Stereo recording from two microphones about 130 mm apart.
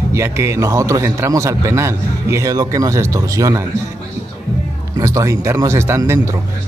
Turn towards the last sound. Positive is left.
turn(degrees=-20)  # may be behind; listen again after turning